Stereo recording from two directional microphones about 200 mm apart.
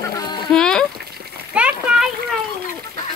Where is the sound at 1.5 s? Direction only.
5° right (ahead or behind).